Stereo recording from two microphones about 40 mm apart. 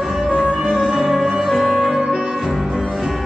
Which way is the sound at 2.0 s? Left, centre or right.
Right.